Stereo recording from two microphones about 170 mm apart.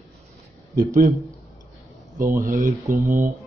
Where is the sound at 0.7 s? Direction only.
55° right (ahead or behind).